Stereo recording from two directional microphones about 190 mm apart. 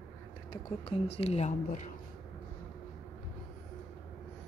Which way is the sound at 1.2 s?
35° left (ahead or behind).